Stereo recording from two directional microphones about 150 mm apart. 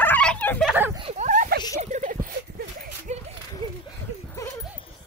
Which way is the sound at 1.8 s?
55° right (ahead or behind).